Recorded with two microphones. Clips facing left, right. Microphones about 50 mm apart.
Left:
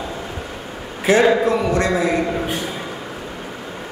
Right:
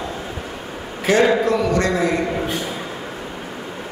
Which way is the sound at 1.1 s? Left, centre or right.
Centre.